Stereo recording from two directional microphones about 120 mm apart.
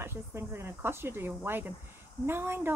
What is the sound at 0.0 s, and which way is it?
Speech, 20° right (ahead or behind).